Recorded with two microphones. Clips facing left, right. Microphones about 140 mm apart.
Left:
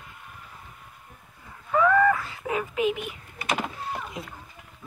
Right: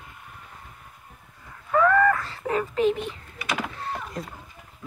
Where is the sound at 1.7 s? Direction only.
10° left (ahead or behind).